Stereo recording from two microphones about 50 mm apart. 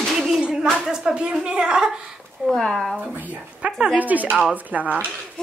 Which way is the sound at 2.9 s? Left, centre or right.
Right.